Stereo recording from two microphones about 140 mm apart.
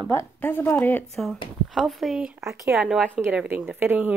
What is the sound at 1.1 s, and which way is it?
Speech, centre (ahead or behind).